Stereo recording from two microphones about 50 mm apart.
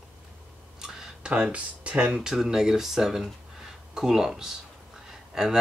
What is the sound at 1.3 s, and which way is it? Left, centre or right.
Speech, right.